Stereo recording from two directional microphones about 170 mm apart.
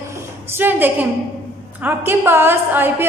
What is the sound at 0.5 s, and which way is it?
A man's voice, 10° right (ahead or behind).